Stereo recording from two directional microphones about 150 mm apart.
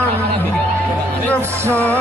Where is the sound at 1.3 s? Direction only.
10° left (ahead or behind).